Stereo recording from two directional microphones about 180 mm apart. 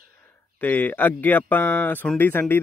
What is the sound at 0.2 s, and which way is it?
Speech, 10° left (ahead or behind).